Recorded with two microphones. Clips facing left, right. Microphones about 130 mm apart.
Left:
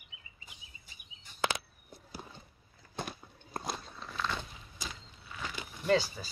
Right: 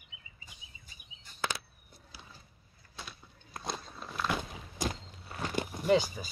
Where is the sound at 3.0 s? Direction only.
55° left (ahead or behind).